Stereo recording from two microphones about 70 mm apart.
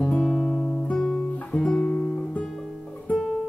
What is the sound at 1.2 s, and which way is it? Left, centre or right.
Music, centre.